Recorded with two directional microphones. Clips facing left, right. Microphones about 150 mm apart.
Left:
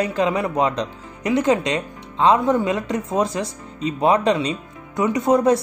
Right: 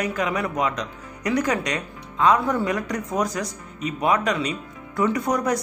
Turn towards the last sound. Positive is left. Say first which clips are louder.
# left 6 dB
turn(degrees=25)  # may be behind; listen again after turning